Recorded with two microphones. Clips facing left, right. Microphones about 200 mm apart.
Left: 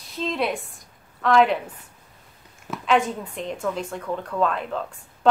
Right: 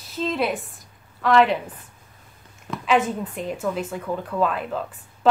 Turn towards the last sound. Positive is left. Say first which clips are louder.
# even
turn(degrees=-5)  # may be behind; listen again after turning